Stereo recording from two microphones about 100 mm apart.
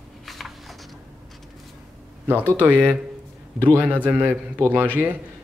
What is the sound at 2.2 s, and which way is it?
A man's voice, 20° right (ahead or behind).